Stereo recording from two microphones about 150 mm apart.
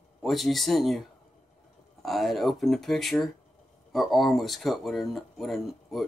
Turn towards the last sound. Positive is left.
turn(degrees=0)  # may be behind; listen again after turning